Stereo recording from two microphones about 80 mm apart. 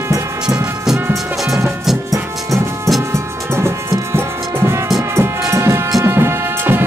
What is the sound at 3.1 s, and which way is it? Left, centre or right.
Music, right.